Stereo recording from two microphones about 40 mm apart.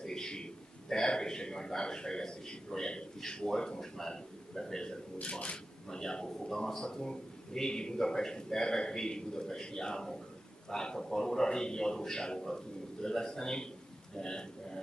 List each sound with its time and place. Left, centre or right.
0.0 s a man's voice: centre
5.2 s speech: left
5.9 s a man's voice: centre